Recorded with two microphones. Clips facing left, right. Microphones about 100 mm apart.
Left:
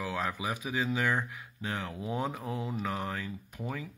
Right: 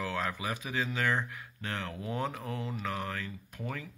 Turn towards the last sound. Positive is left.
turn(degrees=15)  # may be behind; listen again after turning